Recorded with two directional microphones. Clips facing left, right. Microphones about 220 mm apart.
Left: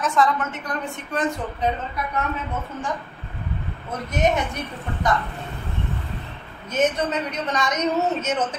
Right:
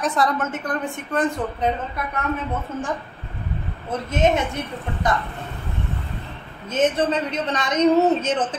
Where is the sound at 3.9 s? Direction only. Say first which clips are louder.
Right 2 dB; 25° right (ahead or behind).